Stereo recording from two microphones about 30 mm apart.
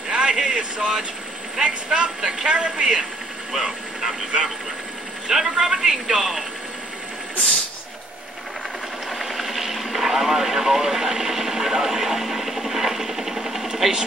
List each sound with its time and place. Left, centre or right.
0.1 s vehicle: right
1.6 s speech: right
9.2 s vehicle: centre